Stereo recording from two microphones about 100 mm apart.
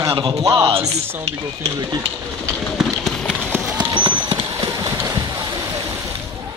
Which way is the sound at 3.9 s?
50° right (ahead or behind).